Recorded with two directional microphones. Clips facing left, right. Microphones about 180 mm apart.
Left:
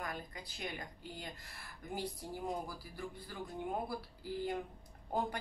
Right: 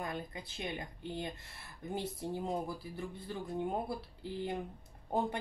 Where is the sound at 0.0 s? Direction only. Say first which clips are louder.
Right 4 dB; 25° right (ahead or behind).